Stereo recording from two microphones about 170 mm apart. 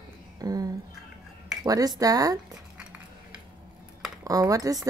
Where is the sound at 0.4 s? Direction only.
20° right (ahead or behind).